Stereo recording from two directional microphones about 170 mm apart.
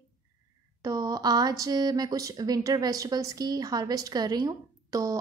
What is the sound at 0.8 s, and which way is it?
Speech, 20° right (ahead or behind).